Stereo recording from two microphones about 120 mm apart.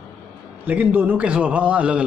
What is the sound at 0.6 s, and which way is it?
A man's voice, 15° right (ahead or behind).